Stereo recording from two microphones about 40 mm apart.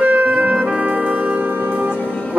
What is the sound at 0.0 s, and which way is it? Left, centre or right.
Music, right.